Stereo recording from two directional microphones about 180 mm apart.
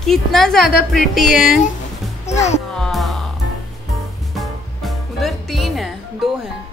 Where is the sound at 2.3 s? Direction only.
40° left (ahead or behind).